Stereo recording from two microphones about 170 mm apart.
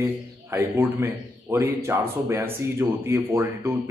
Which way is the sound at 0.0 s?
15° right (ahead or behind).